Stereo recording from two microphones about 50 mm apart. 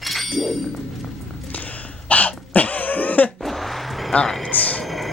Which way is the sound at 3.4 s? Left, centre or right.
Centre.